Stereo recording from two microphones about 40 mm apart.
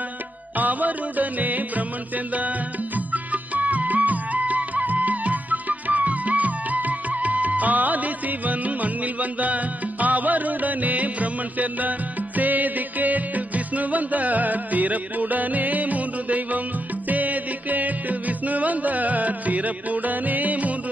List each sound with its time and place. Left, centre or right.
0.6 s music: right
3.1 s music: right